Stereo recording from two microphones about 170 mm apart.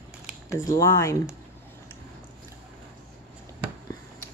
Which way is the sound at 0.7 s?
20° left (ahead or behind).